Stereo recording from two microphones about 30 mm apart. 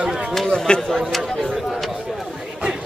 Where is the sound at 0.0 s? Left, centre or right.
Right.